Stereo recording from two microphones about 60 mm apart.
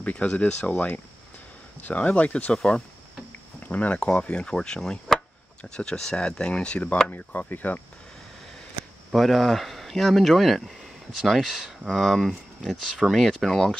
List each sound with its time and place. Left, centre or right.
0.0 s speech: left
3.6 s speech: left
7.1 s speech: left
9.1 s speech: centre